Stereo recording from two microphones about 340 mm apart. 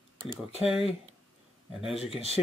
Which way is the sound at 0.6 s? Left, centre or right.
Centre.